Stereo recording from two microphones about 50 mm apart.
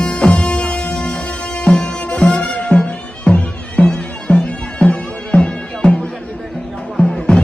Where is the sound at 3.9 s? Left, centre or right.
Left.